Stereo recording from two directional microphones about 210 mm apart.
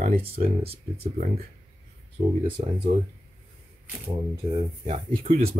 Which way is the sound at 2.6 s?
30° right (ahead or behind).